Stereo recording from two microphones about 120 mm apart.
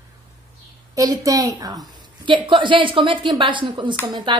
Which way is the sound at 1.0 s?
30° right (ahead or behind).